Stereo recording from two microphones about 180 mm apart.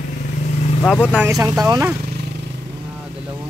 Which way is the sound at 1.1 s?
10° right (ahead or behind).